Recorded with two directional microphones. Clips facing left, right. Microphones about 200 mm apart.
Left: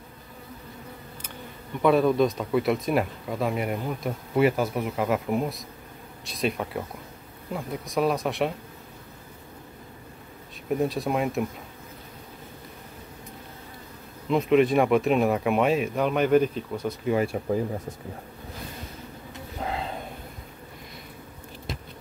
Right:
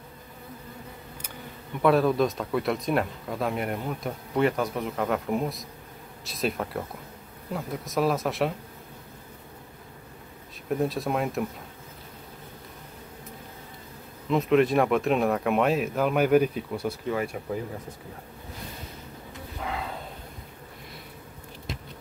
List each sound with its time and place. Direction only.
1.8 s speech: centre (ahead or behind)
10.7 s speech: centre (ahead or behind)
14.3 s speech: centre (ahead or behind)
17.1 s speech: 30° left (ahead or behind)
19.6 s a sound: 30° left (ahead or behind)